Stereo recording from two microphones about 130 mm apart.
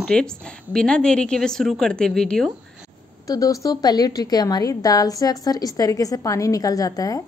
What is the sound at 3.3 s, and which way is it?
A woman's voice, 25° left (ahead or behind).